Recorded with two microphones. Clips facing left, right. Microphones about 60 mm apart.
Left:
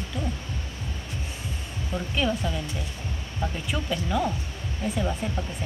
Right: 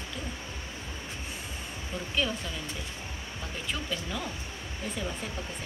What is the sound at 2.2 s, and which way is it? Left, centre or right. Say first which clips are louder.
Speech: left 7 dB; centre.